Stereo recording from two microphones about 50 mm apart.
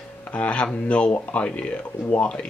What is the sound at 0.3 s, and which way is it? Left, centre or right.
Speech, left.